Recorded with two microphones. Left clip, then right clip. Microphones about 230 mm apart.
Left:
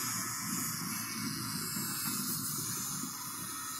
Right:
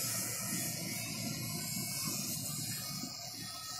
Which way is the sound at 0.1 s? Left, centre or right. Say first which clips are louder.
Left 2 dB; right.